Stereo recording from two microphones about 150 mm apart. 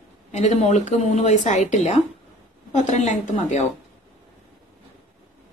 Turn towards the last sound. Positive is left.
turn(degrees=50)  # may be behind; listen again after turning